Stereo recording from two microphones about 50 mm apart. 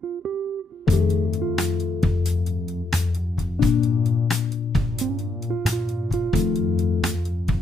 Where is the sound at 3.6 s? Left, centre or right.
Centre.